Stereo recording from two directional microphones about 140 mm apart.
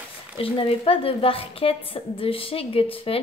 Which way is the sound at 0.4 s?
40° left (ahead or behind).